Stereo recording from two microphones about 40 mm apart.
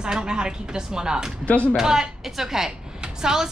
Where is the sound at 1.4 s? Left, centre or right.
Left.